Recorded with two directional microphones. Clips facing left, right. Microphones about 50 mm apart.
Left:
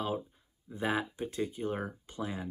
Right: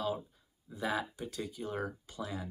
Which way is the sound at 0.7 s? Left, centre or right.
Left.